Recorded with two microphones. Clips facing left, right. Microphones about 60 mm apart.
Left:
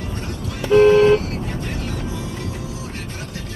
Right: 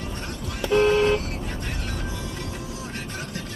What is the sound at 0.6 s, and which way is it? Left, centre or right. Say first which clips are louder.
Vehicle: left 7 dB; centre.